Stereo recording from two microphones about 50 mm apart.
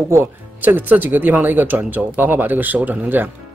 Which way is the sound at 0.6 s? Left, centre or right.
Right.